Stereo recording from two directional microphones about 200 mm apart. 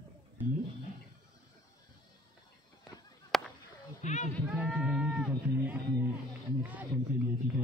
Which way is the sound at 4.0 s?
35° left (ahead or behind).